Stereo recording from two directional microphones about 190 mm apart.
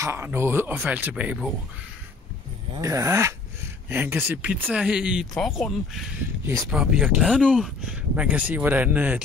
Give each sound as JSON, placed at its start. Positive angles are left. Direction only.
{"t": 0.0, "sound": "speech", "side_deg": -10}
{"t": 2.8, "sound": "speech", "side_deg": -15}
{"t": 6.4, "sound": "speech", "side_deg": -15}
{"t": 6.7, "sound": "speech", "side_deg": -5}